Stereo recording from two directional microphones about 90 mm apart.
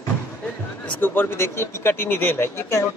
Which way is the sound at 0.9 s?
20° left (ahead or behind).